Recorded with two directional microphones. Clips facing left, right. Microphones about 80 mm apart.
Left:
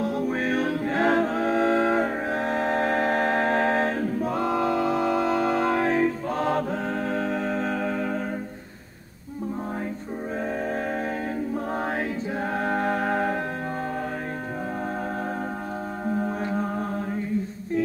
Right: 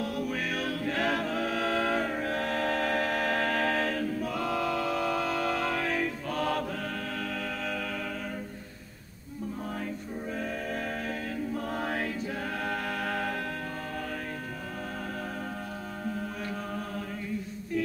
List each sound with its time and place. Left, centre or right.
0.0 s a capella: left
7.1 s music: left
12.5 s music: left
16.1 s chant: left